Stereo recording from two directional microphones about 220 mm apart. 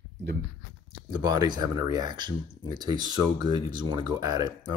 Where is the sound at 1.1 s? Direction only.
20° right (ahead or behind).